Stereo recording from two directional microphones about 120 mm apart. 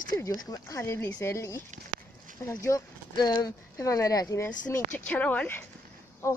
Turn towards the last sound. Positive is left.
turn(degrees=25)  # may be behind; listen again after turning